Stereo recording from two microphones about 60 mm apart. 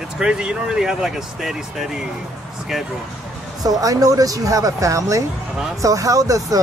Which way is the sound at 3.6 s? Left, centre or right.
Right.